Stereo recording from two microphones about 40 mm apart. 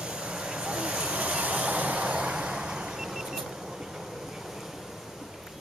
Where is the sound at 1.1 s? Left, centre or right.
Right; by 4.7 s centre.